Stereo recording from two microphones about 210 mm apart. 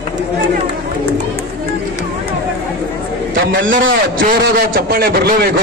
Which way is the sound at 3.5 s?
40° right (ahead or behind).